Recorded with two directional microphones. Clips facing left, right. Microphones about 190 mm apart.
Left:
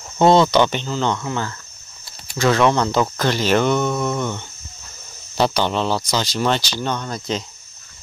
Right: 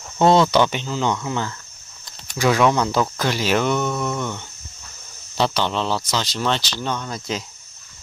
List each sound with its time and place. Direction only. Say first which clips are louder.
0.2 s speech: left 2 dB; centre (ahead or behind)
5.4 s speech: left 2 dB; 5° left (ahead or behind)